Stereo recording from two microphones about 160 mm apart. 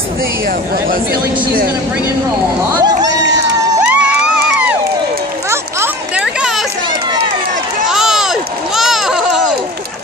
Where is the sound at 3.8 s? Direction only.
10° right (ahead or behind).